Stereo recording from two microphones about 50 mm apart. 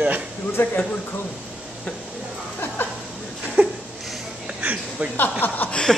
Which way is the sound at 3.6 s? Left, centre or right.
Right.